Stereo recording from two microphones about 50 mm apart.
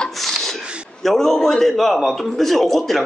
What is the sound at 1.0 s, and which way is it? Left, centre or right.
Speech, centre.